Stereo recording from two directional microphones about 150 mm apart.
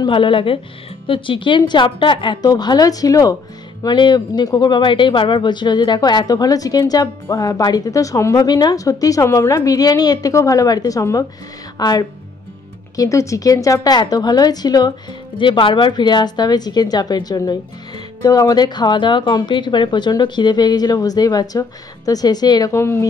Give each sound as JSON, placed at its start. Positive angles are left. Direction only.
{"t": 0.0, "sound": "a woman's voice", "side_deg": 35}